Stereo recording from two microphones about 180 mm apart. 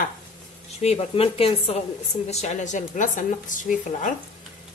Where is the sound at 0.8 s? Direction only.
35° left (ahead or behind).